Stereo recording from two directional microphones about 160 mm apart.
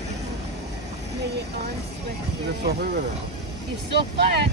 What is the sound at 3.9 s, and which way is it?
Speech, 90° right.